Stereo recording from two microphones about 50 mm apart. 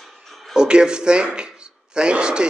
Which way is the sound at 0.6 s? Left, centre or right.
Centre.